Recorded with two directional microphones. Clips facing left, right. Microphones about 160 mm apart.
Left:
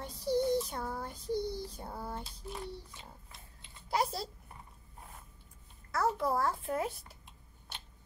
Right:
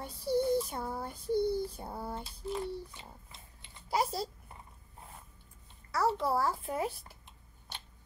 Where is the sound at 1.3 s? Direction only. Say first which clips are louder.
Right 5 dB; 55° right (ahead or behind).